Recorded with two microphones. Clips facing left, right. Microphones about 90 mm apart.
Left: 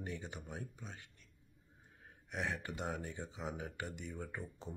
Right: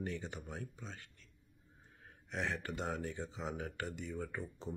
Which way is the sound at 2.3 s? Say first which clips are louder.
Right 1 dB; 15° left (ahead or behind).